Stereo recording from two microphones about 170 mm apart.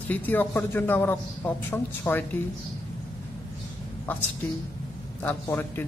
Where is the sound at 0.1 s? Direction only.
10° left (ahead or behind).